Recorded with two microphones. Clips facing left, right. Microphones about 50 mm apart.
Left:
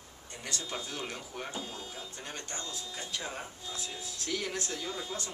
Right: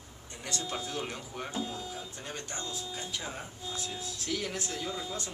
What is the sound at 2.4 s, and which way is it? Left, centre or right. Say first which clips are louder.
Speech: right 2 dB; centre.